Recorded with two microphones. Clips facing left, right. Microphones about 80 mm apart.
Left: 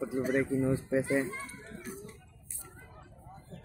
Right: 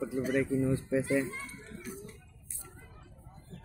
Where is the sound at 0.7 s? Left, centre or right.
Left.